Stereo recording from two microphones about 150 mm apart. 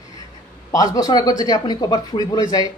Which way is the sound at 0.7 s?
25° left (ahead or behind).